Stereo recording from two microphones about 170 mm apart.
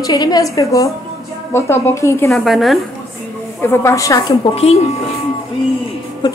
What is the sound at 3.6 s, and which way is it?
Speech, 15° left (ahead or behind).